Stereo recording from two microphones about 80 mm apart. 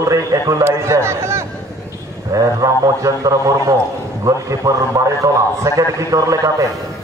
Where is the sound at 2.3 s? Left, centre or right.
Right.